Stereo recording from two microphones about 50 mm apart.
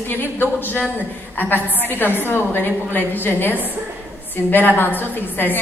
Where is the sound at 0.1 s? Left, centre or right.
Left.